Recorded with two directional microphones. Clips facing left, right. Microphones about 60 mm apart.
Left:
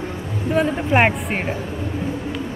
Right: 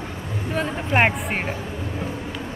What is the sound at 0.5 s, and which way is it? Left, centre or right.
Speech, centre.